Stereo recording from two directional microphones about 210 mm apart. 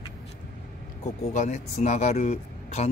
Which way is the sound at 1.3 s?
35° left (ahead or behind).